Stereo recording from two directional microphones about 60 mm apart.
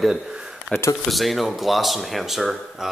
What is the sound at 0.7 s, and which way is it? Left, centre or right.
Speech, centre.